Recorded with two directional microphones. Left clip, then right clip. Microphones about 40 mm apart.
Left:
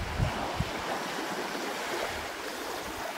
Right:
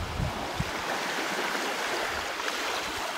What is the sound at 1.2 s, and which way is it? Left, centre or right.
Stream, right.